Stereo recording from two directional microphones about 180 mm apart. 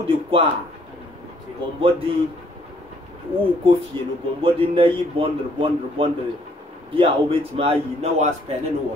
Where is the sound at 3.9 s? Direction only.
25° right (ahead or behind).